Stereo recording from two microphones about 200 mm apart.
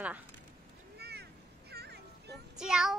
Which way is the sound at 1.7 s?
55° right (ahead or behind).